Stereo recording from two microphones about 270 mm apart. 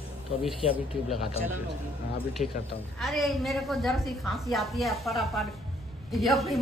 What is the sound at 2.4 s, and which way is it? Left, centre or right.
Speech, left.